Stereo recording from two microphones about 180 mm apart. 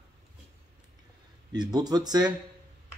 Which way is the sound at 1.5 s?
25° right (ahead or behind).